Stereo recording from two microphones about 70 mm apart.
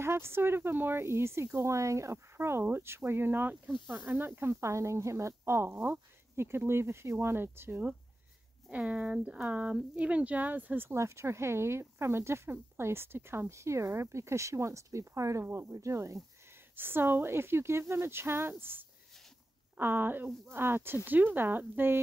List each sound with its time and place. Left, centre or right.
0.0 s speech: right
3.6 s speech: centre
8.6 s speech: centre
11.0 s speech: right
15.4 s speech: right
15.7 s speech: right
16.7 s speech: right